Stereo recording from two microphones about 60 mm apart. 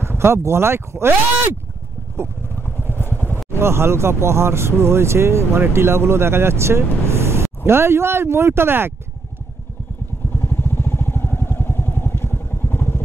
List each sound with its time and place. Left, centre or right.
0.2 s speech: right
2.5 s vehicle: left
3.5 s speech: right
10.3 s vehicle: left